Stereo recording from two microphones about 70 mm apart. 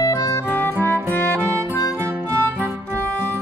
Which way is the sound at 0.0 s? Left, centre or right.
Left.